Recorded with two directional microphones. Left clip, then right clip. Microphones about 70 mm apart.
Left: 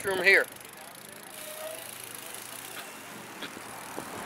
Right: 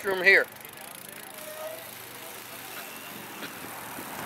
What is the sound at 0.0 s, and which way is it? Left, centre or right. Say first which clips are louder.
Speech: right 2 dB; centre.